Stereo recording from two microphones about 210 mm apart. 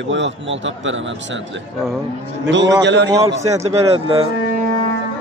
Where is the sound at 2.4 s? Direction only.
60° right (ahead or behind).